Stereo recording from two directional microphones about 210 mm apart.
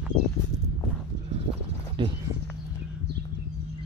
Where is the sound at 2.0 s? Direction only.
25° right (ahead or behind).